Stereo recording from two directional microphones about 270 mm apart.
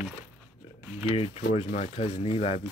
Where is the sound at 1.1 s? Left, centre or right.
Left.